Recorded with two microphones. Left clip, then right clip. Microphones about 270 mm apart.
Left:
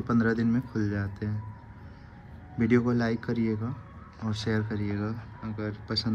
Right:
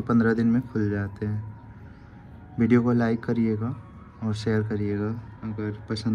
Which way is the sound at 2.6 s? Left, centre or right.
Centre.